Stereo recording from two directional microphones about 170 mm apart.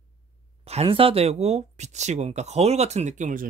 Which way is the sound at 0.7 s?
35° right (ahead or behind).